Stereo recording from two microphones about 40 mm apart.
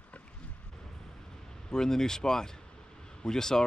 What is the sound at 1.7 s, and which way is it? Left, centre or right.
Speech, centre.